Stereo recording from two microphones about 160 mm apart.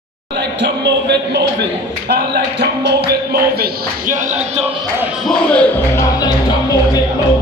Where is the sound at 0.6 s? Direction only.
90° right.